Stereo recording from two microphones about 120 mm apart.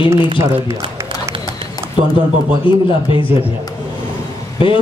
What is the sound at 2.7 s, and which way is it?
Speech, 45° left (ahead or behind).